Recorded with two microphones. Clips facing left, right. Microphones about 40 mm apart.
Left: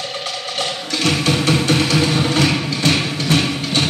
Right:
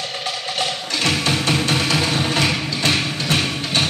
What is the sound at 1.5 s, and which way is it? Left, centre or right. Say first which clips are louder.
Music: left 3 dB; centre.